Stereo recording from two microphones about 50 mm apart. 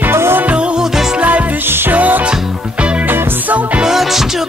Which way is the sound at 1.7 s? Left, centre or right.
Right.